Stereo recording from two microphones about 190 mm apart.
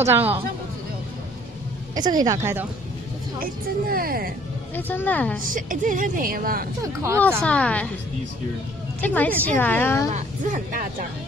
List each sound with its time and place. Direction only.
0.0 s a woman's voice: 10° right (ahead or behind)
2.0 s a woman's voice: 20° right (ahead or behind)
3.3 s a woman's voice: 50° right (ahead or behind)
4.7 s a woman's voice: 10° left (ahead or behind)
5.5 s a woman's voice: 45° right (ahead or behind)
6.8 s a woman's voice: 15° right (ahead or behind)
7.4 s a woman's voice: 5° left (ahead or behind)
9.0 s a woman's voice: 10° left (ahead or behind)
10.1 s a woman's voice: 40° right (ahead or behind)